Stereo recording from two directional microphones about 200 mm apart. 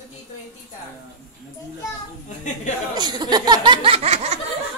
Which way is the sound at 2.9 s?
20° right (ahead or behind).